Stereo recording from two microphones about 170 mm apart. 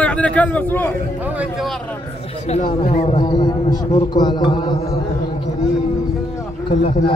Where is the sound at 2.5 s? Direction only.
45° left (ahead or behind).